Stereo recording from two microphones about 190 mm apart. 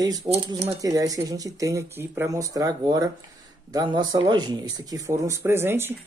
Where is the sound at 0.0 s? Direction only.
20° right (ahead or behind).